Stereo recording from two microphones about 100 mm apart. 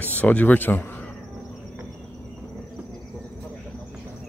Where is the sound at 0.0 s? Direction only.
15° left (ahead or behind).